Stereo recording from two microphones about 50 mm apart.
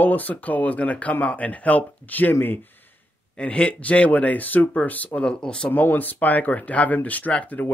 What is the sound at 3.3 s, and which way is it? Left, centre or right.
Speech, left.